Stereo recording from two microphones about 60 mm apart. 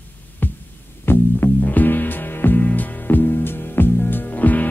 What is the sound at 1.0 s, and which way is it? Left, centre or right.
Music, left.